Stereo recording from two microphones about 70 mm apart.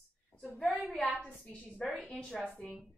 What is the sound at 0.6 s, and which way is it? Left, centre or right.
Speech, centre.